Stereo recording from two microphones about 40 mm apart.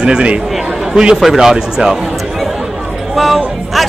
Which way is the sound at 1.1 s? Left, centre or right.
Centre.